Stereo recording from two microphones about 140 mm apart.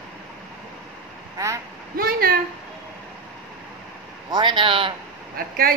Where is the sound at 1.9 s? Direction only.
90° right.